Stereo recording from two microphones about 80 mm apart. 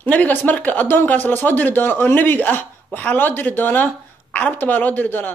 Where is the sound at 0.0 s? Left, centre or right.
Left.